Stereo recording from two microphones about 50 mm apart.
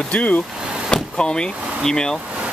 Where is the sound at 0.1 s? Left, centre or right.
Left.